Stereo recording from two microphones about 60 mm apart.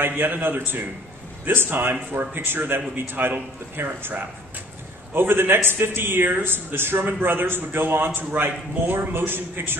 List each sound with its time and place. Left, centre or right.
0.0 s a man's voice: right